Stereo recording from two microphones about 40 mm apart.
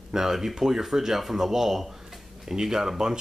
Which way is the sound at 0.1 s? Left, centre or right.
Centre.